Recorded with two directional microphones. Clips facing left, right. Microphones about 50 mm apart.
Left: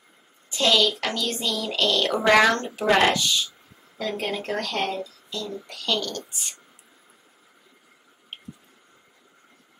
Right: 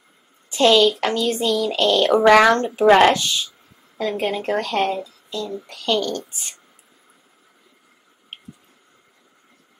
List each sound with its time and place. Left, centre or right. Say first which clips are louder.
0.5 s a child's voice: right 6 dB; right
4.0 s speech: right 5 dB; centre